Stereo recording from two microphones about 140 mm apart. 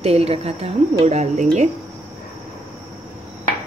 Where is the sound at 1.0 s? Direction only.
55° right (ahead or behind).